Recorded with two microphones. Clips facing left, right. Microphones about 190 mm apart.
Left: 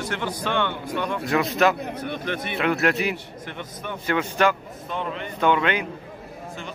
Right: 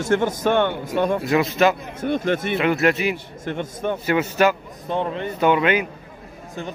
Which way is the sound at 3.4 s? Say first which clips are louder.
Right 10 dB; 50° right (ahead or behind).